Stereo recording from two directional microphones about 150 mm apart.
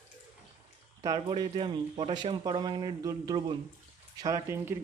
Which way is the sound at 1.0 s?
30° right (ahead or behind).